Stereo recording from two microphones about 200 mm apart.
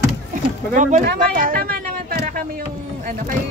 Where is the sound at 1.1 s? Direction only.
45° right (ahead or behind).